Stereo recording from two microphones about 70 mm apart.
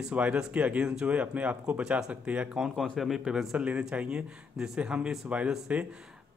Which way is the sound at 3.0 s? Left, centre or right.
Centre.